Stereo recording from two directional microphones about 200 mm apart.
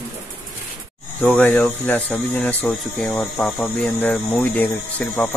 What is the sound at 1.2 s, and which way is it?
Speech, 10° left (ahead or behind).